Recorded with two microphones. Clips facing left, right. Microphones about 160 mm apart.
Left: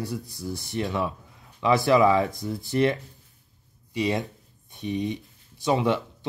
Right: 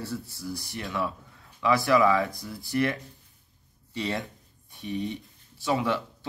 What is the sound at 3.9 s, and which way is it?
Speech, 15° left (ahead or behind).